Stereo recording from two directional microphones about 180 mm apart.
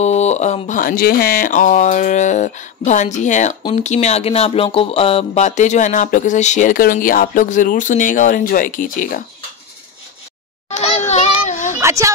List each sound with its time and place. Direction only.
0.0 s speech: 40° left (ahead or behind)
10.7 s children playing: 35° left (ahead or behind)
11.8 s a sound: 15° right (ahead or behind)